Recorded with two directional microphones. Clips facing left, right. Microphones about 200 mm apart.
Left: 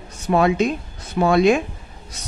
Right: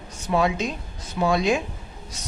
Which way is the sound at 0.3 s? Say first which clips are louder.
Left 5 dB; 60° left (ahead or behind).